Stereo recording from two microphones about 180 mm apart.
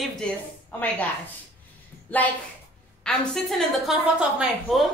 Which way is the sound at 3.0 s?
Centre (ahead or behind).